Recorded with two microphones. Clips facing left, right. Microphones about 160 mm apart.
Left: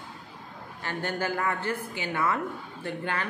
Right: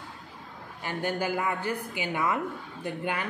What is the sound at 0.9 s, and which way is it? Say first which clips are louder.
A woman's voice: right 1 dB; 15° right (ahead or behind).